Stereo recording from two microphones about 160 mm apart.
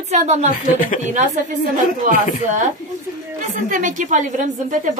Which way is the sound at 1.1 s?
45° right (ahead or behind).